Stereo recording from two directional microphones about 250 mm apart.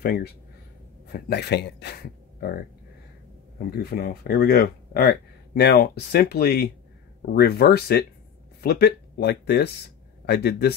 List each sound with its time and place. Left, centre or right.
0.0 s speech: left
3.7 s speech: left